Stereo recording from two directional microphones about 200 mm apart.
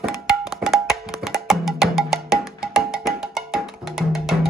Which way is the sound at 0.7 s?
Centre (ahead or behind).